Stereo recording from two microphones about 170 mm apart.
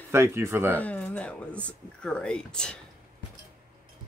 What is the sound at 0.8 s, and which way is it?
Speech, 10° left (ahead or behind).